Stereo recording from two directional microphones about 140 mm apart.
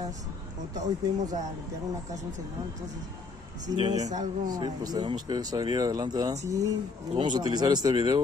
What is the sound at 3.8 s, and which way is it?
Speech, 25° right (ahead or behind).